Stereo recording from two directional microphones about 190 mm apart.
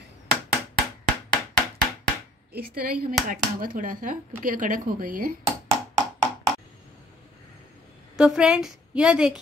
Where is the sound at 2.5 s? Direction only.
50° right (ahead or behind).